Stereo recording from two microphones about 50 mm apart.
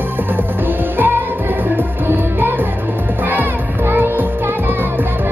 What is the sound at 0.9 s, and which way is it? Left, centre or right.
Music, right.